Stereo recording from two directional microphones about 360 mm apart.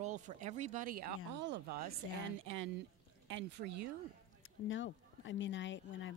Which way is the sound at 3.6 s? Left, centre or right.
Right.